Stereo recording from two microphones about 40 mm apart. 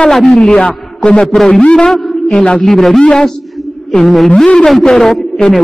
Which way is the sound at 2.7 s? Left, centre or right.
Centre.